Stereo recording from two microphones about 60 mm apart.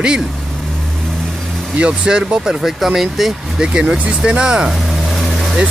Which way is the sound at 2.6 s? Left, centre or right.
Centre.